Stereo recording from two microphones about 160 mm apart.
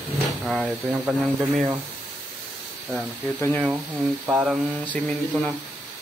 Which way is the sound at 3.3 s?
15° left (ahead or behind).